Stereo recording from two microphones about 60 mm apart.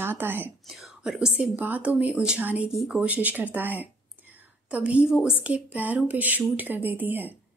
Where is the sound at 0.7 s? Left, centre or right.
Centre.